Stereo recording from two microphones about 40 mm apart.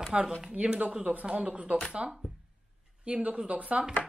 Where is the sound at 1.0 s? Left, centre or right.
Right.